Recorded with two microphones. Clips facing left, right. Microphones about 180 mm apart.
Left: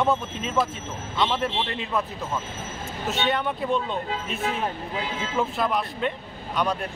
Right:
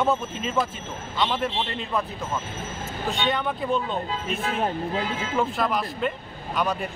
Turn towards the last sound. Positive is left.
turn(degrees=-5)  # may be behind; listen again after turning